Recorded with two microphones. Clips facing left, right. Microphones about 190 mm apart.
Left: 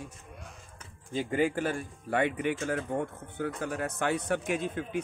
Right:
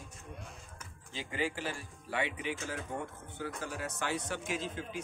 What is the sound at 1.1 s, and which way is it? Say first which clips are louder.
Speech: left 9 dB; 50° left (ahead or behind).